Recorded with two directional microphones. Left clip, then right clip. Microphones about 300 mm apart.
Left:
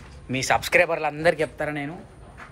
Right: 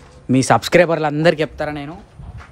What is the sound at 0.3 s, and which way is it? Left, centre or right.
Speech, right.